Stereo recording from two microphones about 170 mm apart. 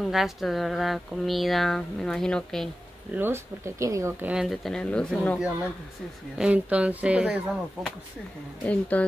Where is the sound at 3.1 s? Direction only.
15° right (ahead or behind).